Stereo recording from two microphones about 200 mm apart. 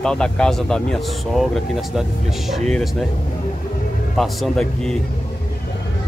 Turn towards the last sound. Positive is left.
turn(degrees=0)  # may be behind; listen again after turning